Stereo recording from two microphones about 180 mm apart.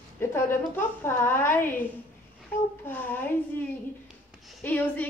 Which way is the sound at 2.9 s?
10° left (ahead or behind).